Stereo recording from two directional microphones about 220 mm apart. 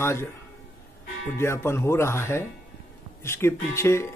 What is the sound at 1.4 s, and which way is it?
Speech, 10° left (ahead or behind).